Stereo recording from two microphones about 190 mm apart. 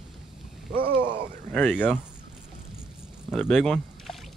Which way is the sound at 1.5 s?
5° left (ahead or behind).